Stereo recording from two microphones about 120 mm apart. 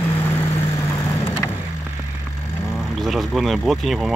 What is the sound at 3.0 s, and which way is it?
Speech, centre (ahead or behind).